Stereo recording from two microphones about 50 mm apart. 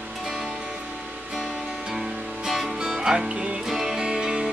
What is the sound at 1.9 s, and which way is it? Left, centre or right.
Music, centre.